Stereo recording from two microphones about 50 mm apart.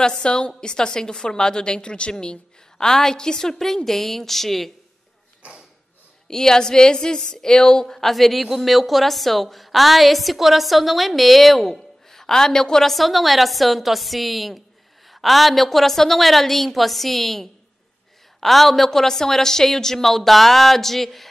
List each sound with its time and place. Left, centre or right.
0.0 s a woman's voice: centre
2.8 s a woman's voice: centre
6.2 s a woman's voice: centre